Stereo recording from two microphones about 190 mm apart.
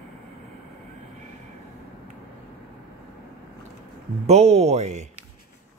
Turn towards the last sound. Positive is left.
turn(degrees=-35)  # may be behind; listen again after turning